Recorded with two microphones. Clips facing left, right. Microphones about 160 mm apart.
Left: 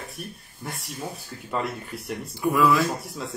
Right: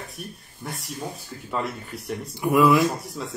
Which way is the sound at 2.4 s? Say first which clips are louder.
Right 3 dB; 20° right (ahead or behind).